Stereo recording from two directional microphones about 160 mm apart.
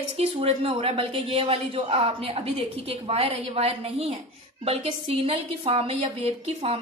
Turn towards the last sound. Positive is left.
turn(degrees=-40)  # may be behind; listen again after turning